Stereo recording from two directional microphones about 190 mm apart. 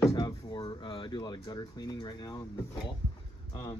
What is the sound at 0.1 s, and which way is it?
Speech, 20° left (ahead or behind).